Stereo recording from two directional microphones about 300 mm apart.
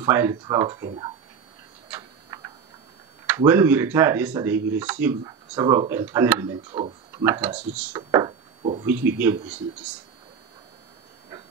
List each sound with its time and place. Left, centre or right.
0.0 s speech: centre
1.9 s tick-tock: centre
3.3 s speech: centre
8.8 s speech: centre